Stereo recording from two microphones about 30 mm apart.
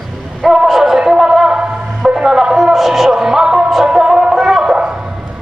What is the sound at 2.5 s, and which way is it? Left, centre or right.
Music, centre.